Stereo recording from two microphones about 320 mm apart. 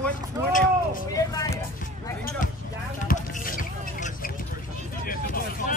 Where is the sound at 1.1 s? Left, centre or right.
Centre.